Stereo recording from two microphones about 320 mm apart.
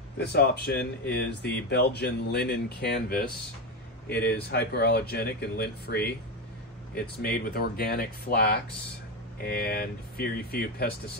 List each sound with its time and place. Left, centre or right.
0.2 s speech: left
4.5 s speech: left
7.2 s speech: left